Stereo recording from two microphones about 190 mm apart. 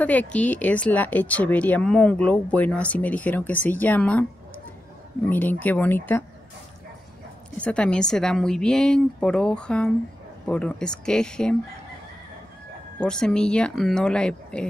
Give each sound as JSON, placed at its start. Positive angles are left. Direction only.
{"t": 0.0, "sound": "speech", "side_deg": 10}
{"t": 5.3, "sound": "speech", "side_deg": 10}
{"t": 7.5, "sound": "a woman's voice", "side_deg": 5}
{"t": 13.0, "sound": "a woman's voice", "side_deg": 5}